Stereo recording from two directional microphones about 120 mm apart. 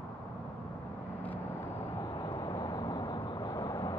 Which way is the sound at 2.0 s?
35° left (ahead or behind).